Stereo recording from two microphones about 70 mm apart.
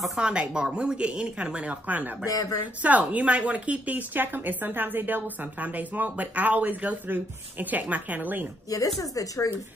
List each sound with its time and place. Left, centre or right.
0.2 s a woman's voice: centre
8.6 s speech: left